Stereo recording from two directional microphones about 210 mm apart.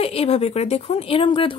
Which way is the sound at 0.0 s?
30° left (ahead or behind).